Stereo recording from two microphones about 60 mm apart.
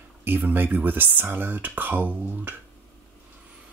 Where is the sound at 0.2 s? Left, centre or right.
Right.